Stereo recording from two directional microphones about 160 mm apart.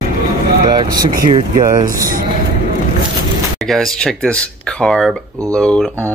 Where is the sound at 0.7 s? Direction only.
25° right (ahead or behind).